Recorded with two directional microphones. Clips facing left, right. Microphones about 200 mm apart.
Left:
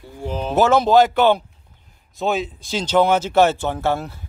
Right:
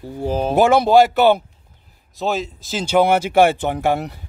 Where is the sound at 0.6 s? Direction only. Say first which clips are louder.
Right 1 dB; 10° right (ahead or behind).